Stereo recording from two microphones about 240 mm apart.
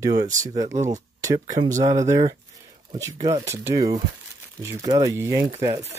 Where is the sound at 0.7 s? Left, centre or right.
Right.